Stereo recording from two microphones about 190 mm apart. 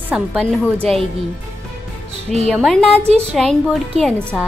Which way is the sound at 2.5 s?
Centre (ahead or behind).